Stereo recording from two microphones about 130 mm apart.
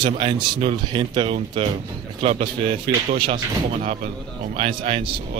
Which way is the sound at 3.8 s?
60° right (ahead or behind).